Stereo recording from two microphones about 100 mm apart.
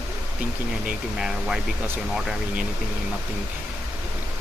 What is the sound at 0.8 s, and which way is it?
Speech, 5° right (ahead or behind).